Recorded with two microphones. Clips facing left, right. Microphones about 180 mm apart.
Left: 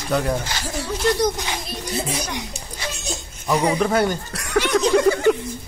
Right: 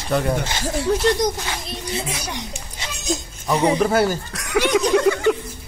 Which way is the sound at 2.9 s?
40° right (ahead or behind).